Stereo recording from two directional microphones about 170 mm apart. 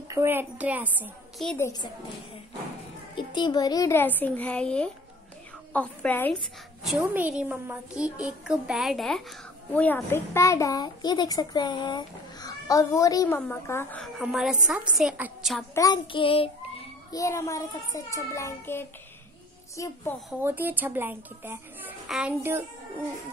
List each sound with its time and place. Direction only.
0.1 s speech: 15° right (ahead or behind)
1.6 s a child's voice: 20° left (ahead or behind)
3.2 s a woman's voice: 25° left (ahead or behind); by 6.3 s 10° left (ahead or behind)
6.8 s a woman's voice: 5° right (ahead or behind)
14.2 s a woman's voice: 5° right (ahead or behind)
15.7 s a child's voice: 20° left (ahead or behind)
17.1 s a woman's voice: 20° left (ahead or behind)
20.2 s speech: 10° right (ahead or behind)